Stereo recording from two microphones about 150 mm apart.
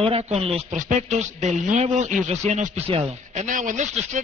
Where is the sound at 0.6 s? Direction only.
55° right (ahead or behind).